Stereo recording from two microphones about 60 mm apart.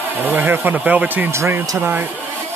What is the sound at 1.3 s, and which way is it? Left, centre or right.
Speech, right.